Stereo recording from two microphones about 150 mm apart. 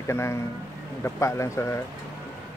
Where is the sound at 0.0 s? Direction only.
15° left (ahead or behind).